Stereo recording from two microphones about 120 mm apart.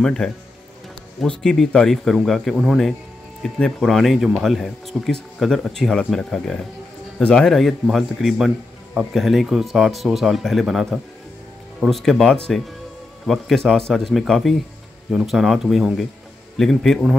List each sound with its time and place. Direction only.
0.0 s speech: 5° left (ahead or behind)
1.4 s speech: 5° left (ahead or behind)